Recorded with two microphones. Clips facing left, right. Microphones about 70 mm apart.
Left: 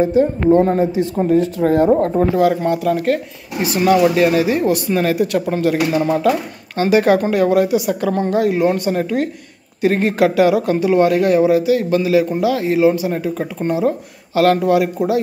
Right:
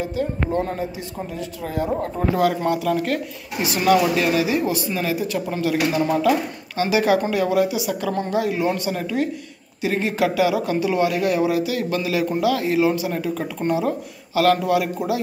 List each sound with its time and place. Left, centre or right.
0.0 s speech: left
2.3 s speech: left
5.5 s speech: left